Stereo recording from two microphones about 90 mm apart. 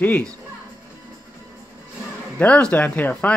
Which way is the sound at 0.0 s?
20° left (ahead or behind).